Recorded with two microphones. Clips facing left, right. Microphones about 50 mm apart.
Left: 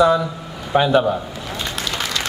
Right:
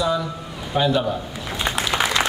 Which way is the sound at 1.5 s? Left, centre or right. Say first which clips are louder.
Right 4 dB; right.